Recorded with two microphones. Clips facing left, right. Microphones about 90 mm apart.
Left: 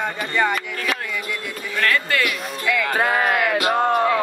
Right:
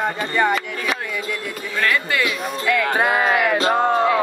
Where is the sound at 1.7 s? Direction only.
15° right (ahead or behind).